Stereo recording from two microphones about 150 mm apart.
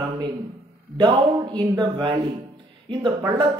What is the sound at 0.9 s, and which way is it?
Speech, 30° right (ahead or behind).